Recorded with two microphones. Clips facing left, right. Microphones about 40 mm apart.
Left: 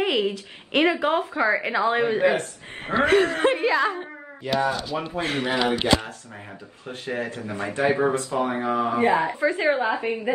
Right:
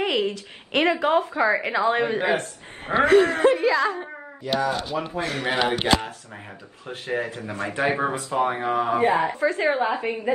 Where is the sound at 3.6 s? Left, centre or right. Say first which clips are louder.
Right 1 dB; centre.